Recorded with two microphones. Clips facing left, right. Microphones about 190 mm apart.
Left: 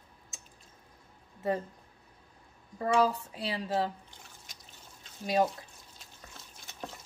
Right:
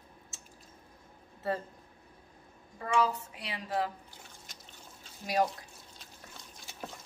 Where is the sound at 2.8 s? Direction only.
35° left (ahead or behind).